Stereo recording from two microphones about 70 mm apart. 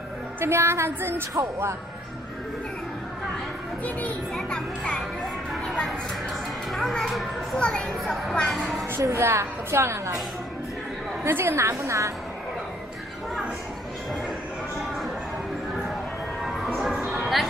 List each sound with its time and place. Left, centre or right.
0.4 s a woman's voice: right
4.4 s a child's voice: centre
4.9 s music: centre
6.7 s a child's voice: centre
9.2 s a woman's voice: right
11.2 s a woman's voice: right
16.4 s music: centre